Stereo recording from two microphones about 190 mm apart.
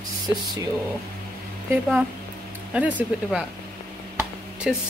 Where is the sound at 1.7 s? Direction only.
5° right (ahead or behind).